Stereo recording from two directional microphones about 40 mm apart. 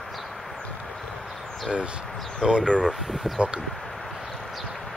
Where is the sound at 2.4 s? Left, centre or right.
Right.